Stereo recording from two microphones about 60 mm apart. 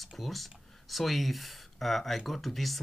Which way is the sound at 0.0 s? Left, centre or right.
Centre.